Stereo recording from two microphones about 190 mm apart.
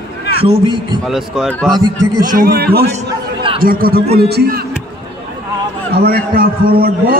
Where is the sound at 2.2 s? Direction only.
50° right (ahead or behind).